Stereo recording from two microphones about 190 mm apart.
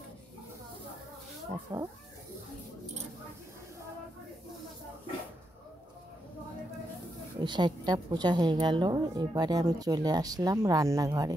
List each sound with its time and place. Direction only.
1.7 s a woman's voice: 20° right (ahead or behind)
7.3 s a woman's voice: 25° right (ahead or behind)